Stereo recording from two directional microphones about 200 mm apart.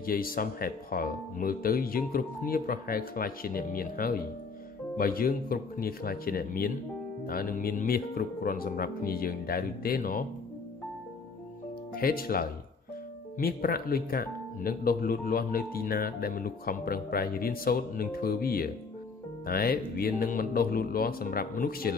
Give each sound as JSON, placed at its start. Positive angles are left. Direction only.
{"t": 0.0, "sound": "speech", "side_deg": 45}
{"t": 11.9, "sound": "speech", "side_deg": 45}